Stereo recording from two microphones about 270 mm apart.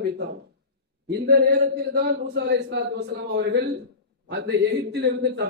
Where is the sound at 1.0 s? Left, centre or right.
Right.